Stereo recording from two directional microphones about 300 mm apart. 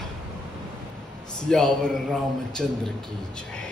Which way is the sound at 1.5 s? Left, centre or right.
Centre.